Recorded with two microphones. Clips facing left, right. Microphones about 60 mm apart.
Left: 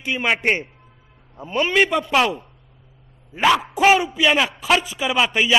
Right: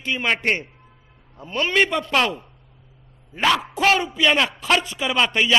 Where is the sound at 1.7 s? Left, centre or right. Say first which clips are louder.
Left 1 dB; centre.